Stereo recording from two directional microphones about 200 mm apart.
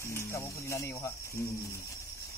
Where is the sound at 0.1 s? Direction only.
15° left (ahead or behind).